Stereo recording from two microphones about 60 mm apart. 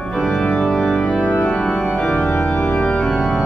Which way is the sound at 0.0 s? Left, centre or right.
Centre.